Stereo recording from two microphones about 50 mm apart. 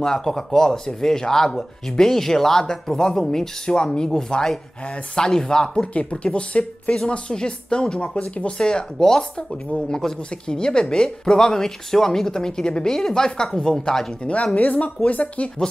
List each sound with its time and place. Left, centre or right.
0.0 s speech: centre
5.9 s speech: left
14.3 s speech: left